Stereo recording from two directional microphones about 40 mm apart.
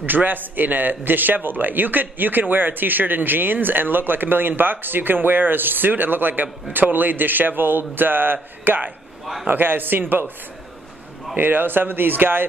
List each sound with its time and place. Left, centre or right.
0.0 s a man's voice: right
11.3 s a man's voice: right